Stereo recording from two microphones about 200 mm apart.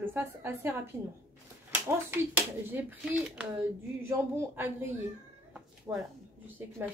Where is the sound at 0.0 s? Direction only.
10° right (ahead or behind).